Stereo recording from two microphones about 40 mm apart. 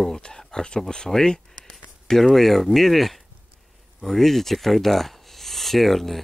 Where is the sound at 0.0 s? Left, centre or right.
Centre.